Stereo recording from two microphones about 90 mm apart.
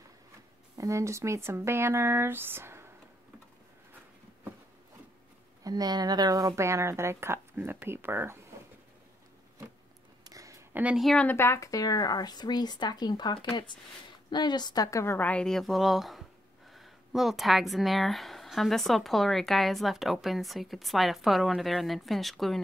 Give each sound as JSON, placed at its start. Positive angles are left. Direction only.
{"t": 0.7, "sound": "speech", "side_deg": -35}
{"t": 5.6, "sound": "speech", "side_deg": -45}
{"t": 10.2, "sound": "a sound", "side_deg": -40}
{"t": 10.7, "sound": "a sound", "side_deg": -15}
{"t": 11.3, "sound": "speech", "side_deg": 30}
{"t": 14.9, "sound": "a woman's voice", "side_deg": 35}
{"t": 15.1, "sound": "speech", "side_deg": 15}